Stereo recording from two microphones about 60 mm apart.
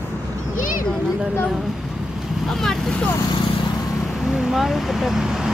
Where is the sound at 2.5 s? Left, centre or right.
Centre.